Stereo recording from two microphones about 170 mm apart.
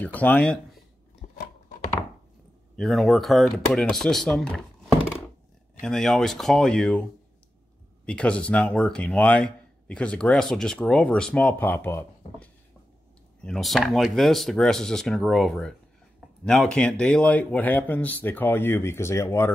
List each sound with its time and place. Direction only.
0.0 s speech: 10° left (ahead or behind)
1.2 s scissors: 50° left (ahead or behind)
2.7 s speech: centre (ahead or behind)
5.8 s speech: 5° left (ahead or behind)
13.4 s speech: 5° left (ahead or behind)